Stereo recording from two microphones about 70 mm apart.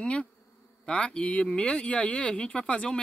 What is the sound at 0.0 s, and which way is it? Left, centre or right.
Bee, centre.